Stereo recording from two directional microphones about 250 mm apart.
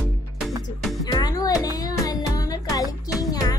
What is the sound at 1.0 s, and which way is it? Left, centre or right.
Music, centre.